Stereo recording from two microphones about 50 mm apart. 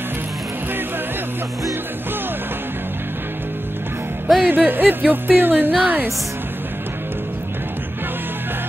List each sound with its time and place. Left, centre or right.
4.4 s speech: right